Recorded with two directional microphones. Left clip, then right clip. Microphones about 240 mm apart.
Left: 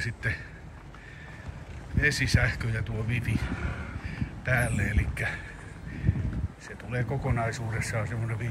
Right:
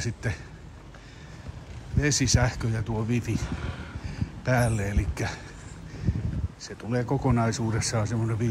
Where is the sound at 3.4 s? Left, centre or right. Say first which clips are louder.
Left 1 dB; centre.